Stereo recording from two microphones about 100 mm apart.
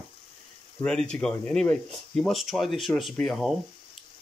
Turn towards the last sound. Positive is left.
turn(degrees=0)  # may be behind; listen again after turning